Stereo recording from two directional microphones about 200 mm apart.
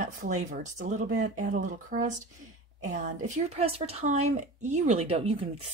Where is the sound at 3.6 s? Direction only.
30° right (ahead or behind).